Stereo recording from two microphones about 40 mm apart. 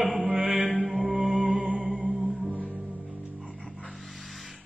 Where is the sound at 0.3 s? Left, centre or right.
Right.